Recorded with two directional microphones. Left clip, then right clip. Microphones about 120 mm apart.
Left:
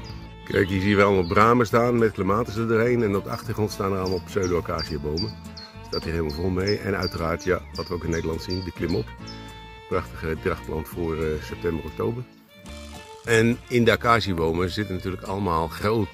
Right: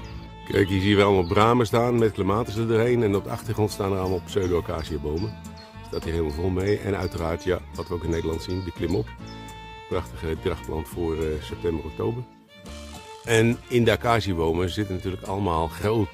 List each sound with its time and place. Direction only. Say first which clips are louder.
0.5 s speech: even; 15° right (ahead or behind)
13.2 s speech: left 1 dB; 10° right (ahead or behind)